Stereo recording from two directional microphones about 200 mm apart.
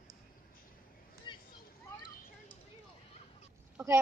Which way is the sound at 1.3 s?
25° left (ahead or behind).